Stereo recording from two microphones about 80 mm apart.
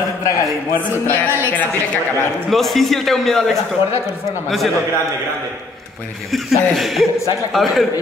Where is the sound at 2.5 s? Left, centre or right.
Centre.